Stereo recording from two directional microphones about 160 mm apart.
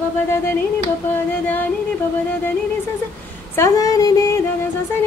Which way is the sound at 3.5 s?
20° left (ahead or behind).